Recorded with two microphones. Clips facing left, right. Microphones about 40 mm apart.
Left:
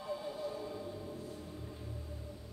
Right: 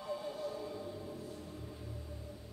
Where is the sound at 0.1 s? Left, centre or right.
Centre.